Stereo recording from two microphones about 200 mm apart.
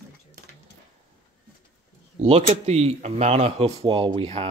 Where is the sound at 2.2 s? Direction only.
30° right (ahead or behind).